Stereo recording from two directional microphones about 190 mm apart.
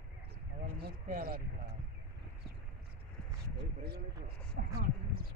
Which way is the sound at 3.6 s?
60° right (ahead or behind).